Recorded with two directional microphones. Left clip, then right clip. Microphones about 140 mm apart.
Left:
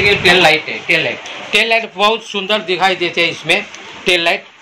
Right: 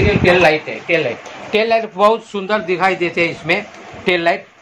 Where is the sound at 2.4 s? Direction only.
30° right (ahead or behind).